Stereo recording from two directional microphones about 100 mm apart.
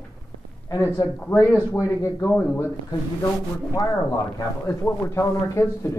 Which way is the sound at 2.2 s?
20° left (ahead or behind).